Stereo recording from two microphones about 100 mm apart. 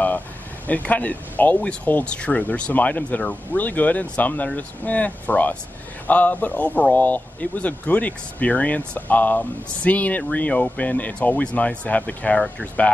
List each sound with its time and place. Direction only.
0.7 s speech: 15° left (ahead or behind)